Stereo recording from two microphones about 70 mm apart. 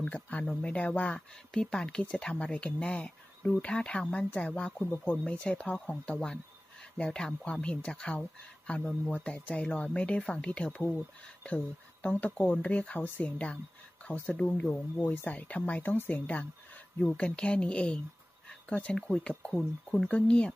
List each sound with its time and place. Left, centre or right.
0.0 s speech: centre